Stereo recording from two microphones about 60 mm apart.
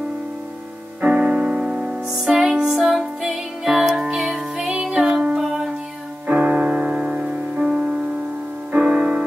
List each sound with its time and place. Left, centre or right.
1.0 s music: right
6.2 s music: right